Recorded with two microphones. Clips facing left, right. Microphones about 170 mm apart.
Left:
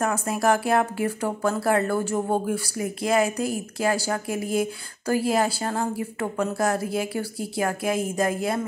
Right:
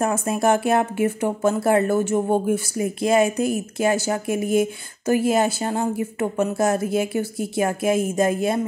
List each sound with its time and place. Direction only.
0.0 s speech: 25° right (ahead or behind)